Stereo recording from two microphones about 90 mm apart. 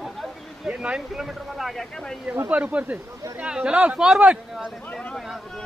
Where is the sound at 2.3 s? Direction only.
20° right (ahead or behind).